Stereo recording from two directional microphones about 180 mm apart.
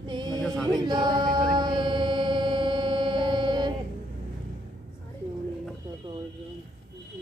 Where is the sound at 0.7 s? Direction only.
25° right (ahead or behind).